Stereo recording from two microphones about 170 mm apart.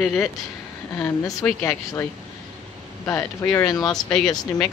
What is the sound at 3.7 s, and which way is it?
Speech, 20° left (ahead or behind).